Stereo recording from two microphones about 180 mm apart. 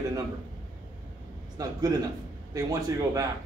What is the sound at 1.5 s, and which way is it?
Speech, 20° right (ahead or behind).